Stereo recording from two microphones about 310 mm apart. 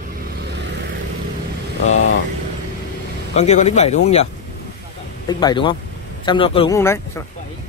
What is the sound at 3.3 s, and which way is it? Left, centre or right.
Speech, left.